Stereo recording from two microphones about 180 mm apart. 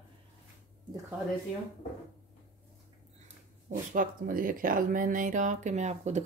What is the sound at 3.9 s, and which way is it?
Speech, 50° right (ahead or behind).